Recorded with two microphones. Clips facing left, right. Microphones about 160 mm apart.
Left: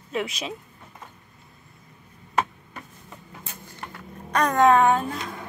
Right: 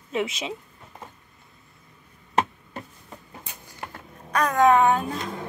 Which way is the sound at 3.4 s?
15° right (ahead or behind).